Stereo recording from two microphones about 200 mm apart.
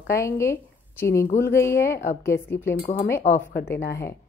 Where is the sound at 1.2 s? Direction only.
45° left (ahead or behind).